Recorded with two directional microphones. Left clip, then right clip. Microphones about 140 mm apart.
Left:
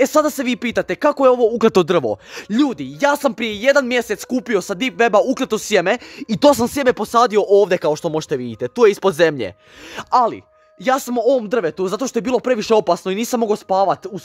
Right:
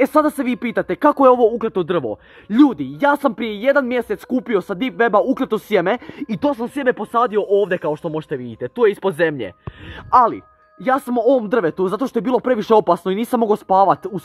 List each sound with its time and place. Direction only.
0.0 s speech: 25° left (ahead or behind)
1.1 s speech: 10° right (ahead or behind)
1.8 s speech: 60° left (ahead or behind)
2.7 s speech: 15° left (ahead or behind)
6.7 s speech: 50° left (ahead or behind)
8.6 s speech: 40° left (ahead or behind)
10.2 s speech: 20° left (ahead or behind)
11.2 s speech: 10° right (ahead or behind)
11.8 s speech: 5° left (ahead or behind)
13.4 s speech: 5° right (ahead or behind)